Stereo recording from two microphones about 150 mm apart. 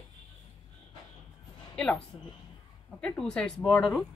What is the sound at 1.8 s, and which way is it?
A woman's voice, 5° left (ahead or behind).